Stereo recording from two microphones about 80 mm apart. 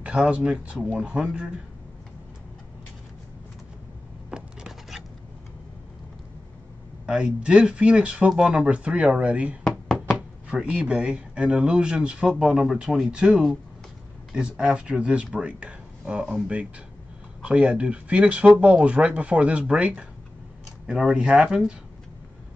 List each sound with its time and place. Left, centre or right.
0.0 s speech: centre
4.3 s a sound: centre
7.1 s speech: centre
8.6 s speech: centre